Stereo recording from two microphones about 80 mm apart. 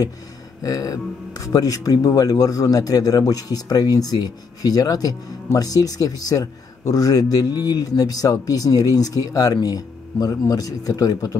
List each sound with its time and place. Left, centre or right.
0.6 s speech: left